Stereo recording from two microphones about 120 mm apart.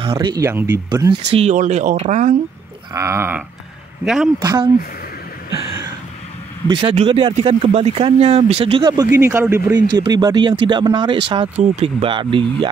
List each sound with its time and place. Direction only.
0.0 s speech: 45° right (ahead or behind)
0.4 s a sound: 20° right (ahead or behind)
1.1 s speech: 50° right (ahead or behind)
1.5 s speech: 85° right
2.9 s a sound: 25° right (ahead or behind)
4.0 s speech: 5° right (ahead or behind)
4.4 s speech: 35° right (ahead or behind)
6.7 s speech: 40° right (ahead or behind)
7.3 s speech: 55° right (ahead or behind)
8.8 s speech: 30° right (ahead or behind)
9.2 s a sound: 20° right (ahead or behind)
9.7 s speech: 35° right (ahead or behind)